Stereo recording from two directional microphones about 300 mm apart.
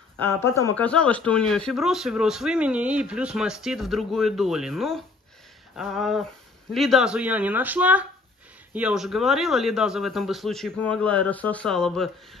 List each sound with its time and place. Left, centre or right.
0.2 s speech: centre